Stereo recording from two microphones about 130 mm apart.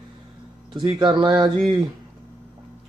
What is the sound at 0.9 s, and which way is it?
Speech, 35° right (ahead or behind).